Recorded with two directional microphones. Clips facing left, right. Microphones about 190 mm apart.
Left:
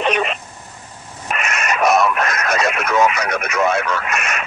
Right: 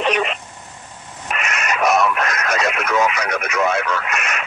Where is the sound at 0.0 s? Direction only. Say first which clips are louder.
Left 1 dB; 50° left (ahead or behind).